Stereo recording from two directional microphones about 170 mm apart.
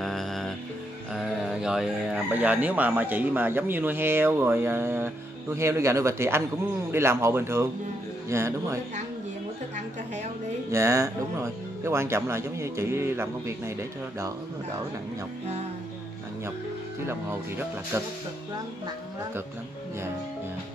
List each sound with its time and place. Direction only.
0.0 s music: centre (ahead or behind)
1.1 s speech: 5° right (ahead or behind)
10.7 s speech: 15° right (ahead or behind)
17.0 s speech: 15° right (ahead or behind)